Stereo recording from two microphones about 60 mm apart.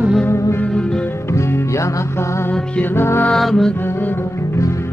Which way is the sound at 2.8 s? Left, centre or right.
Left.